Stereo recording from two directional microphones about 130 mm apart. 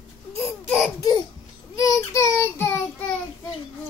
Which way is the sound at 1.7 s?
25° left (ahead or behind).